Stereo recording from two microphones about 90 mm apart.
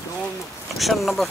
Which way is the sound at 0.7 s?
Centre (ahead or behind).